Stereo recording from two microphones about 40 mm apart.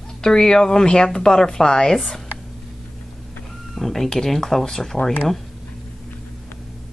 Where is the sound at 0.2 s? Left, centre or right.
Centre.